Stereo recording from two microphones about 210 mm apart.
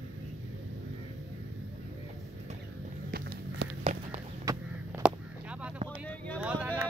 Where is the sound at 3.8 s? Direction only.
25° right (ahead or behind).